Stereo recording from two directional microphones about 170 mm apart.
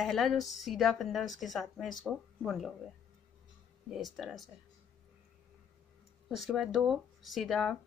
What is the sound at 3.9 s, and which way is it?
Speech, centre (ahead or behind).